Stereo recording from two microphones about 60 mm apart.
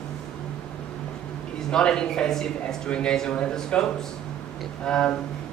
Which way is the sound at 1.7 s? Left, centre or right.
Centre.